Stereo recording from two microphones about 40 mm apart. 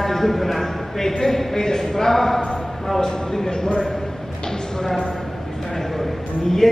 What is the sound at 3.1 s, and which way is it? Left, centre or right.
Speech, centre.